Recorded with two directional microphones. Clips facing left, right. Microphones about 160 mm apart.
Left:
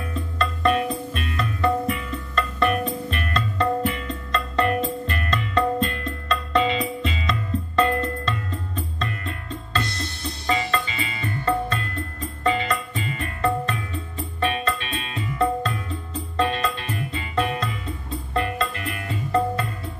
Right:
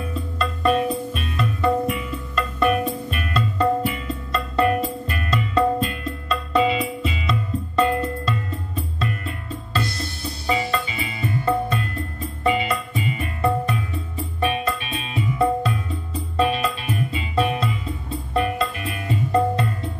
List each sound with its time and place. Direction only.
0.1 s music: 5° right (ahead or behind)